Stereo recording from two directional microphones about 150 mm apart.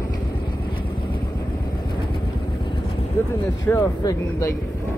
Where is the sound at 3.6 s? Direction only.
20° left (ahead or behind).